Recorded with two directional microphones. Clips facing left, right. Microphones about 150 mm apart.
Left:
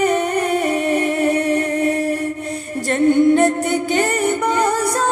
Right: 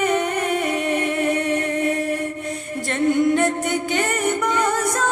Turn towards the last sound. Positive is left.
turn(degrees=35)  # may be behind; listen again after turning